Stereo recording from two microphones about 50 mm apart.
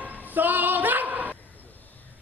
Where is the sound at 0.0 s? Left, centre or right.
Right.